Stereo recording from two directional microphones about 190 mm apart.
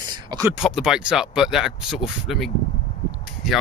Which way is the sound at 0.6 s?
Centre (ahead or behind).